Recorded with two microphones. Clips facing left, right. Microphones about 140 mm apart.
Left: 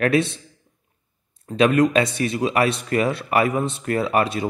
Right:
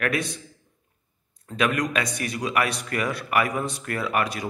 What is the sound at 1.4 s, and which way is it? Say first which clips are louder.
Speech: left 8 dB; 25° left (ahead or behind).